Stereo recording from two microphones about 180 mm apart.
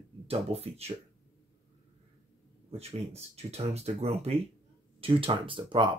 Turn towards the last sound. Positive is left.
turn(degrees=-25)  # may be behind; listen again after turning